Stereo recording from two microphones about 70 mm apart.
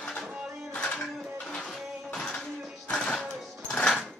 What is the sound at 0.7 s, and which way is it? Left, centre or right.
Music, centre.